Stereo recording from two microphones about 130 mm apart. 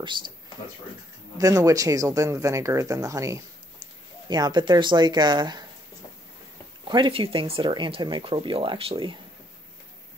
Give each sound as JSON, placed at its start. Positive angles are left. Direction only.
{"t": 1.4, "sound": "speech", "side_deg": -25}
{"t": 6.9, "sound": "speech", "side_deg": -40}